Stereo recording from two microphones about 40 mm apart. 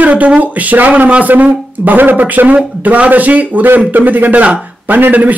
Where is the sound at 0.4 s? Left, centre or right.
Right.